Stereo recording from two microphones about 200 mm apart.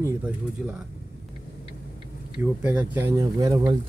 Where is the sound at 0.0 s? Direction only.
5° right (ahead or behind).